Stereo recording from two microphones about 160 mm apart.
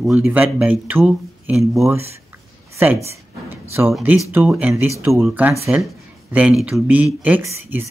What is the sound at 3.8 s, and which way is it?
Speech, 15° right (ahead or behind).